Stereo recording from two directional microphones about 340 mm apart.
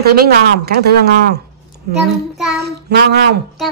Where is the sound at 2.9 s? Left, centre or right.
Right.